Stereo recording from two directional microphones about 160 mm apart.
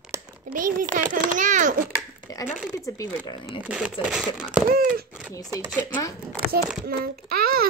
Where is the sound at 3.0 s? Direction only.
25° left (ahead or behind).